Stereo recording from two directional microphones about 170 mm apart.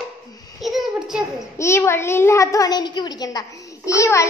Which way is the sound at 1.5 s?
15° left (ahead or behind).